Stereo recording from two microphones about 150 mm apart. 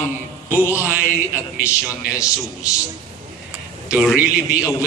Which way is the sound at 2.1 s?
20° left (ahead or behind).